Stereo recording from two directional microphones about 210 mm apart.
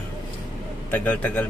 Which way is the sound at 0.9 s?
10° left (ahead or behind).